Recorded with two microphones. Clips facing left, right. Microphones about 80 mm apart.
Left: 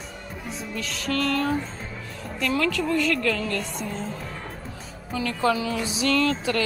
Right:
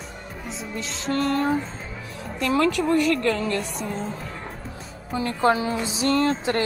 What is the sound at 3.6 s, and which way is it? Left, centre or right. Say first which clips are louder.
Speech: right 2 dB; right.